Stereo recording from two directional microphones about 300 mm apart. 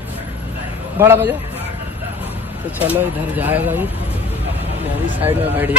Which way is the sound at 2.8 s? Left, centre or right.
Centre.